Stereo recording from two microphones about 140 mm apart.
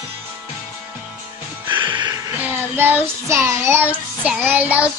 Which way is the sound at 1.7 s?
35° right (ahead or behind).